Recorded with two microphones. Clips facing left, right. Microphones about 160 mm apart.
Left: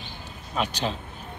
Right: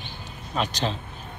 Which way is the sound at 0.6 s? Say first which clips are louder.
Right 1 dB; 10° left (ahead or behind).